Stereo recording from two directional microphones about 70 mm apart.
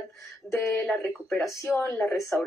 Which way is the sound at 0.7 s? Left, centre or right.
Centre.